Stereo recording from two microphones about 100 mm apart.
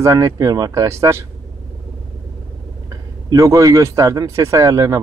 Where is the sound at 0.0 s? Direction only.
35° right (ahead or behind).